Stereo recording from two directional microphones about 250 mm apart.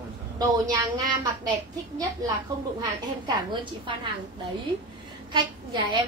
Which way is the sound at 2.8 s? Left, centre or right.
Centre.